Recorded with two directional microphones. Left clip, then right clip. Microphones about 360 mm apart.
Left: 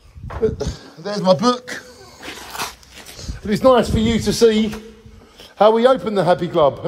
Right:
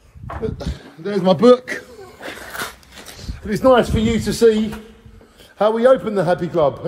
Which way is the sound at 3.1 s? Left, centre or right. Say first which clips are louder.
Left 4 dB; left.